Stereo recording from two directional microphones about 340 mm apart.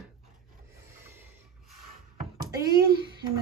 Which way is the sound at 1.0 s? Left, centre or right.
Centre.